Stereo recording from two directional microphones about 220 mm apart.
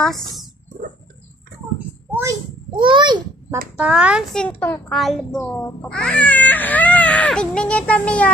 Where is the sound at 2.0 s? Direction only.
15° right (ahead or behind).